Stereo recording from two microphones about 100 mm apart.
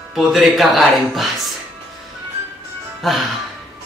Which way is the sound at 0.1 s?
Centre (ahead or behind).